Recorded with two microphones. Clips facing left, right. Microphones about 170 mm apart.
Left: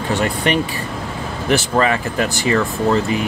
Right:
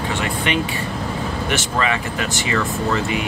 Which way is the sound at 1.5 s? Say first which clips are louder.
Left 7 dB; 40° left (ahead or behind).